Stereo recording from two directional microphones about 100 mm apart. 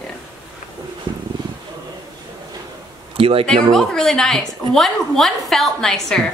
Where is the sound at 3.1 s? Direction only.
70° right (ahead or behind).